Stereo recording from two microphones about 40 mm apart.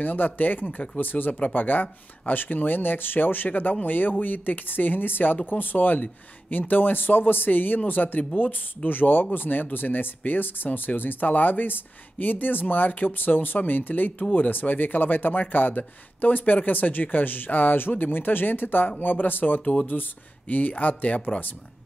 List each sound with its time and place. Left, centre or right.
0.0 s speech: left
19.6 s speech: left